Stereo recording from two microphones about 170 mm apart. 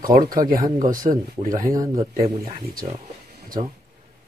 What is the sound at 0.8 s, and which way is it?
Speech, 55° right (ahead or behind).